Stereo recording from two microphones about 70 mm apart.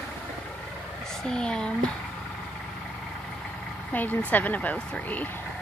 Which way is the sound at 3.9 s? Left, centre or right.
Left.